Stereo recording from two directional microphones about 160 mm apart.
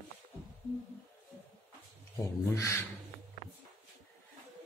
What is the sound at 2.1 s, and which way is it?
Speech, 20° left (ahead or behind).